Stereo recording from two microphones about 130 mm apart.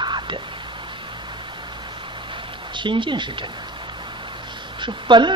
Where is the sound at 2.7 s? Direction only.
40° right (ahead or behind).